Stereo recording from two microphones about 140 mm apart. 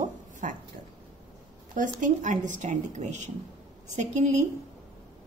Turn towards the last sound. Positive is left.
turn(degrees=-55)  # may be behind; listen again after turning